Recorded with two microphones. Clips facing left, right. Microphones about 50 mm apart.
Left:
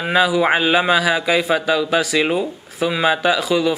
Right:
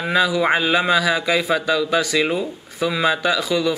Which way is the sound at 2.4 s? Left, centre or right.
Centre.